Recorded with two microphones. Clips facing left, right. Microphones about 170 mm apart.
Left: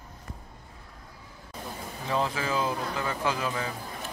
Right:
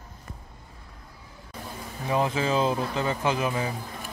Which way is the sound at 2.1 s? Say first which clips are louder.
Right 4 dB; 20° right (ahead or behind).